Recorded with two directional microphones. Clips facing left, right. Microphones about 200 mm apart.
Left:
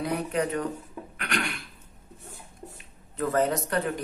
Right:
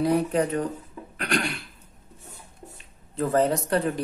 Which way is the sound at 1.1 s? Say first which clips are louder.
Right 5 dB; 35° right (ahead or behind).